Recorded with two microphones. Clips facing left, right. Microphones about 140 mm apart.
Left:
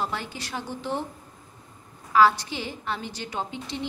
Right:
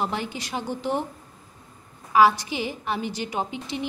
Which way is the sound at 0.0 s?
20° right (ahead or behind).